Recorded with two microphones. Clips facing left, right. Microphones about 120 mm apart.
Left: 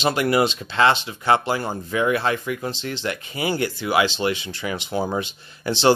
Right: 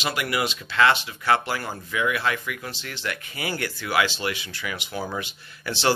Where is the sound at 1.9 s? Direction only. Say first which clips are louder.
Left 4 dB; 35° left (ahead or behind).